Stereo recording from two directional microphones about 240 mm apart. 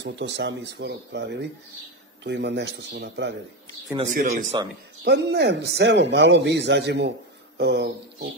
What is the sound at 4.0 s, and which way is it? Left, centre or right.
Speech, right.